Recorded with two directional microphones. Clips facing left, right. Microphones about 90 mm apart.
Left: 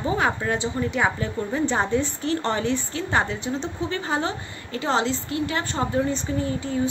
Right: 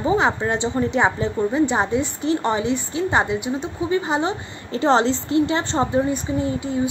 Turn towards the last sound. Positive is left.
turn(degrees=-15)  # may be behind; listen again after turning